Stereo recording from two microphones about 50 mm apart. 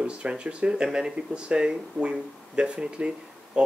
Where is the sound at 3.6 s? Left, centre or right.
Centre.